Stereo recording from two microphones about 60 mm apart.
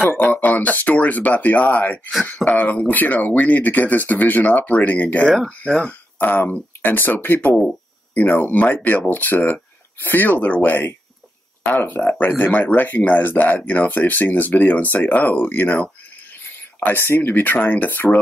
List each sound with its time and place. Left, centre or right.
0.0 s speech: left